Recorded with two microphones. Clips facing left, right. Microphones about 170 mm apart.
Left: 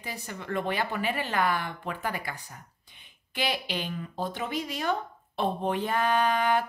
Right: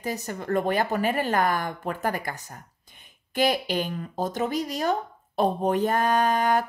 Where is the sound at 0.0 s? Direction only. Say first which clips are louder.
Right 8 dB; 40° right (ahead or behind).